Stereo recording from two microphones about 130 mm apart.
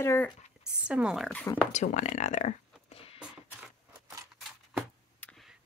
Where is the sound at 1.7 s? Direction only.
65° left (ahead or behind).